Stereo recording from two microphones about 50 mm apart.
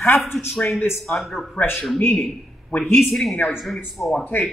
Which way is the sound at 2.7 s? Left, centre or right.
Left.